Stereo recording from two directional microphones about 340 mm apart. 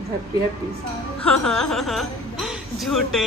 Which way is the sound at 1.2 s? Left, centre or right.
Centre.